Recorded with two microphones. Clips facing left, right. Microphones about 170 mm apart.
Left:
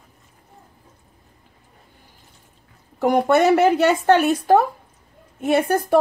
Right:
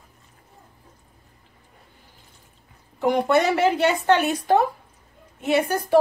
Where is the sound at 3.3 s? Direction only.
50° left (ahead or behind).